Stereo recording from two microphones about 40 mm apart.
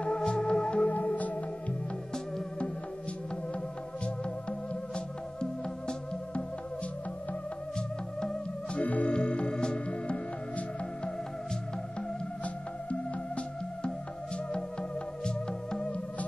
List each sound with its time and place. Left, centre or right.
0.0 s music: left
0.8 s music: left
4.0 s music: left
8.7 s organ: left
9.1 s music: left
14.3 s music: left